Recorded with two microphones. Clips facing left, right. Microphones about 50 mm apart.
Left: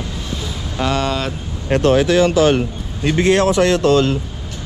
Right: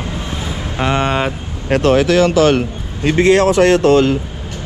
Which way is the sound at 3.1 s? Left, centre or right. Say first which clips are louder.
Right 3 dB; right.